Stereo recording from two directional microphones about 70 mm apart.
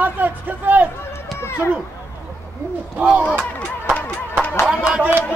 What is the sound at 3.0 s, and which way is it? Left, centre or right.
Speech, centre.